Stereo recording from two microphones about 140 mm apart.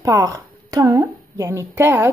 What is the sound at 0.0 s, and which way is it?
A woman's voice, 25° right (ahead or behind).